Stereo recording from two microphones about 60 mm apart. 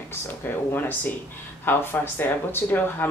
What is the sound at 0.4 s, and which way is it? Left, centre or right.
Speech, left.